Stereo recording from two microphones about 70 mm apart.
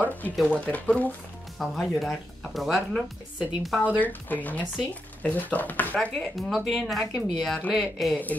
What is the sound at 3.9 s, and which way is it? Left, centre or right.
Speech, left.